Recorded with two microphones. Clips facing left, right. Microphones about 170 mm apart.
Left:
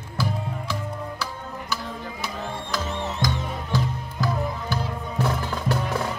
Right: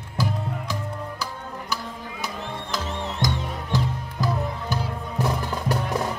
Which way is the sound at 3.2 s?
15° right (ahead or behind).